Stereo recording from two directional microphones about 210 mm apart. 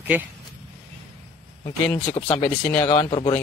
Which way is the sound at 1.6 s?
10° left (ahead or behind).